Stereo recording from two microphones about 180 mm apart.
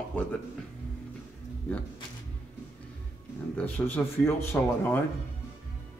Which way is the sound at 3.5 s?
5° left (ahead or behind).